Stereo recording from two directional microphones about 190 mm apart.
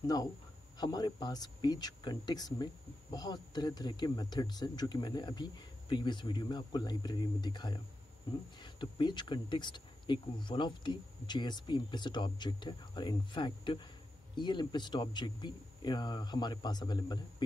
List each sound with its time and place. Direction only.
0.0 s speech: 20° left (ahead or behind)